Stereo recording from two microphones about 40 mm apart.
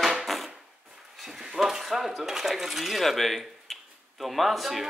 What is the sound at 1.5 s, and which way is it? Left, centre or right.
Speech, centre.